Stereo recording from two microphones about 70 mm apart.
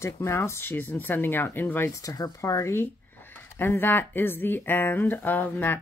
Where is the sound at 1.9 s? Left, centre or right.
Left.